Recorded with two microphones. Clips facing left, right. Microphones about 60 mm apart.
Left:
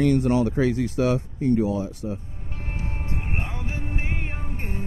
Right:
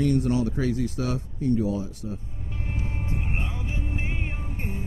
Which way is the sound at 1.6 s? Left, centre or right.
Left.